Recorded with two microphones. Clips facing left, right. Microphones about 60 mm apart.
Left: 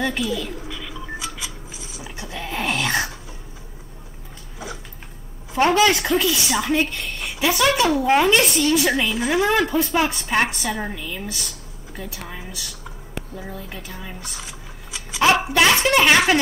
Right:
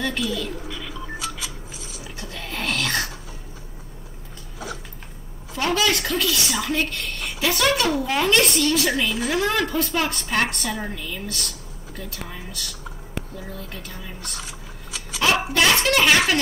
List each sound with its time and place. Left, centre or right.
0.0 s a sound: centre
5.6 s a woman's voice: left
6.0 s a woman's voice: centre
8.7 s speech: centre